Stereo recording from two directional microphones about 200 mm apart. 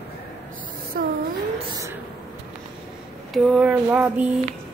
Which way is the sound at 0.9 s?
45° right (ahead or behind).